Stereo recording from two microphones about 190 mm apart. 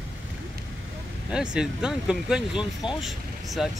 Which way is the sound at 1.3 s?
5° right (ahead or behind).